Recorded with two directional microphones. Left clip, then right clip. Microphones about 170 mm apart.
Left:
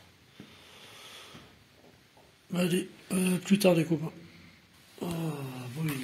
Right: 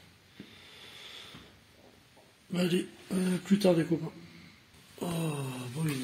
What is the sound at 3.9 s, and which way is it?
Speech, 30° left (ahead or behind).